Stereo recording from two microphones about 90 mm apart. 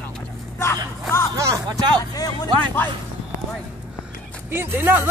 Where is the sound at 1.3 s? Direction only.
35° right (ahead or behind).